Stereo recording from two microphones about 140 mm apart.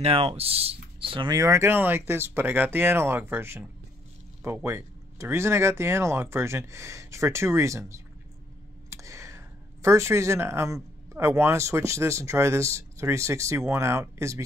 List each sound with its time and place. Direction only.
0.0 s speech: 45° right (ahead or behind); by 14.4 s 20° right (ahead or behind)